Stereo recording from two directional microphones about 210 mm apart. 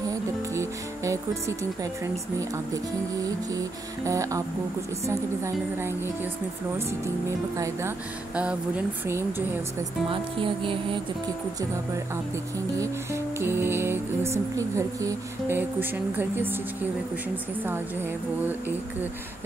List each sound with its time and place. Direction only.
0.1 s music: 15° right (ahead or behind)
10.0 s music: 25° right (ahead or behind)
12.7 s music: 15° right (ahead or behind)